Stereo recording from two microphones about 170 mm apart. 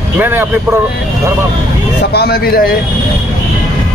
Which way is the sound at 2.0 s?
70° left (ahead or behind).